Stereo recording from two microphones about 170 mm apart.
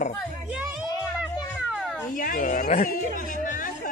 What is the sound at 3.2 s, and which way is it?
Chatter, 50° left (ahead or behind).